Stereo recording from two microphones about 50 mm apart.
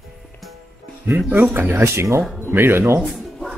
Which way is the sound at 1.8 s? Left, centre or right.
Right.